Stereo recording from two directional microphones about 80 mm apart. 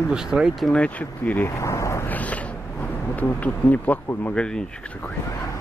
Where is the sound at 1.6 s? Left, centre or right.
Left.